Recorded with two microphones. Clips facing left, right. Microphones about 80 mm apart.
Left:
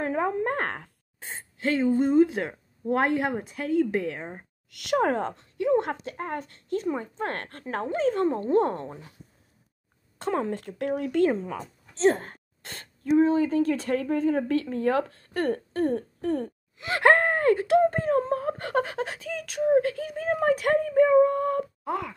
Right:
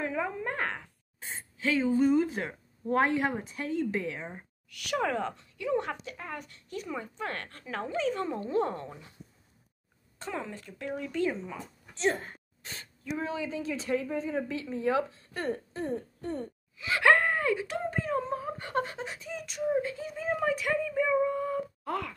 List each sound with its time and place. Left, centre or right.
0.0 s speech: left
10.2 s speech: left
16.8 s speech: left
18.7 s speech: left
19.7 s speech: left
21.8 s speech: centre